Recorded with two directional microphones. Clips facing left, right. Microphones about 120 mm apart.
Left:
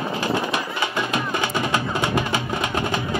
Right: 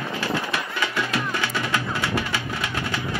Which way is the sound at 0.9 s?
20° left (ahead or behind).